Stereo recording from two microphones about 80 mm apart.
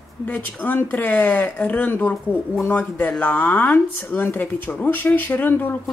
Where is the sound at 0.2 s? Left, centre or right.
Centre.